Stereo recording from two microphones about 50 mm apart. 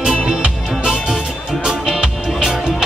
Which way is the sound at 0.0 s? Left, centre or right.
Centre.